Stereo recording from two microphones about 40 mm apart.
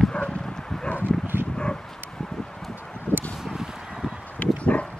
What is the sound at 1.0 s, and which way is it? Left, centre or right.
Bow-wow, right.